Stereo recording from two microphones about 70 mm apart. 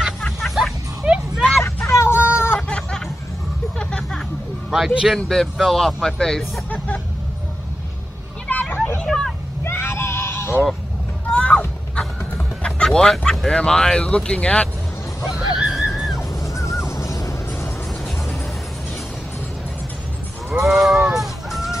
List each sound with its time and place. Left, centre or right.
0.4 s music: centre
1.0 s a sound: centre
1.9 s a sound: left
3.7 s music: centre
4.6 s speech: centre
8.5 s vehicle: left
9.0 s vehicle: centre
9.7 s neigh: left
11.2 s a sound: centre
12.6 s speech: centre
15.2 s a sound: centre
15.9 s music: centre
16.2 s music: left
20.6 s honk: centre